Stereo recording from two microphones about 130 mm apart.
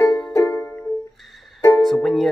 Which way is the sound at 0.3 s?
20° left (ahead or behind).